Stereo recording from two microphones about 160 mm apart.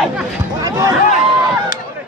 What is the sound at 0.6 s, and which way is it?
Speech, 25° right (ahead or behind).